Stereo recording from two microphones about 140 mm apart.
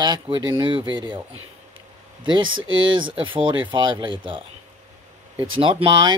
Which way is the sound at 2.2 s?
35° right (ahead or behind).